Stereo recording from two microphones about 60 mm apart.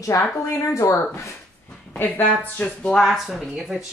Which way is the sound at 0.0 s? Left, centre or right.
Left.